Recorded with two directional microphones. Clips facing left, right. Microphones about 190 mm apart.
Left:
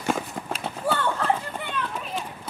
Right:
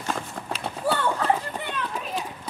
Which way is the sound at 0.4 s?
5° left (ahead or behind).